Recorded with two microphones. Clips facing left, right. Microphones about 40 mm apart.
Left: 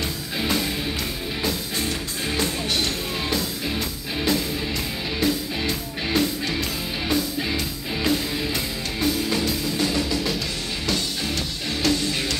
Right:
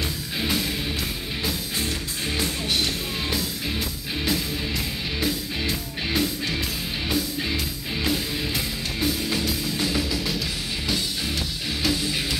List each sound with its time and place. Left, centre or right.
0.4 s music: centre
11.8 s music: centre